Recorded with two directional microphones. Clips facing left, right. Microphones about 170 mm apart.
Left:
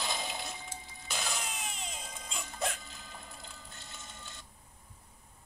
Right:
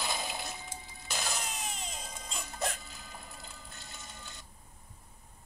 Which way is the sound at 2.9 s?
5° right (ahead or behind).